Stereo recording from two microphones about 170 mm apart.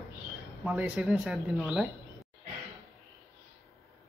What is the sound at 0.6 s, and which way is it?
Speech, 5° right (ahead or behind).